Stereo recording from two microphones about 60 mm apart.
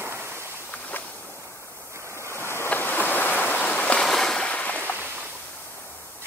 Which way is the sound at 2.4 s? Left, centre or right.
Left.